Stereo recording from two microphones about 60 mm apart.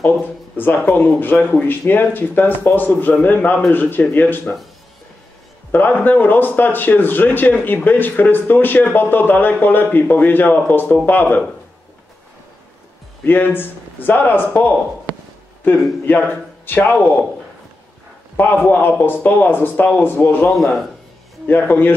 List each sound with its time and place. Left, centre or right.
0.8 s speech: left
5.7 s speech: left
13.2 s speech: left
16.6 s a man's voice: left
18.3 s speech: left
20.4 s a man's voice: centre
21.5 s speech: left